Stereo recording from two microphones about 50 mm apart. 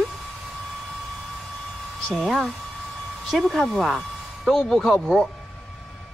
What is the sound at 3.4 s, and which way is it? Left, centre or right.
Speech, centre.